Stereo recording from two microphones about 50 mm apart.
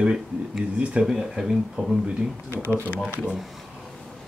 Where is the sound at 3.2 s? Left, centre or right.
Centre.